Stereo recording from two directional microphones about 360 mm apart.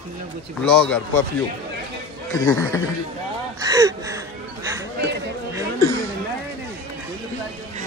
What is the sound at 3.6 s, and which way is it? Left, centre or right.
Speech, centre.